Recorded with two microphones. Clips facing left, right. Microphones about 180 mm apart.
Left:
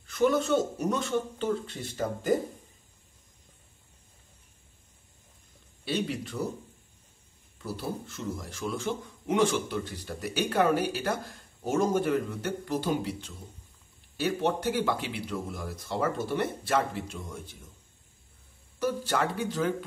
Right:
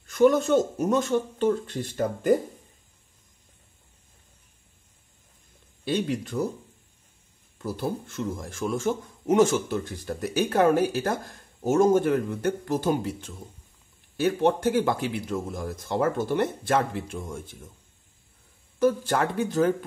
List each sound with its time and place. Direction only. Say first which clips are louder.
0.0 s a man's voice: right 5 dB; 45° right (ahead or behind)
5.9 s a man's voice: right 4 dB; 50° right (ahead or behind)
7.5 s a man's voice: right 5 dB; 50° right (ahead or behind)
18.8 s a man's voice: right 5 dB; 50° right (ahead or behind)